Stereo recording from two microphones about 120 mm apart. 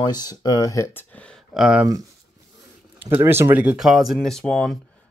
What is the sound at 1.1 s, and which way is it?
Speech, 10° left (ahead or behind).